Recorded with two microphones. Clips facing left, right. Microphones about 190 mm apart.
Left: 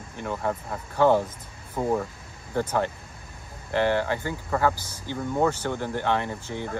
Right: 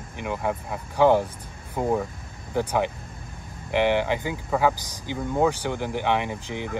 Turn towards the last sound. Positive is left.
turn(degrees=-15)  # may be behind; listen again after turning